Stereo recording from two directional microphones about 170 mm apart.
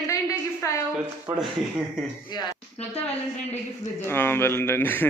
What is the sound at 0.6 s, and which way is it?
Speech, 15° left (ahead or behind).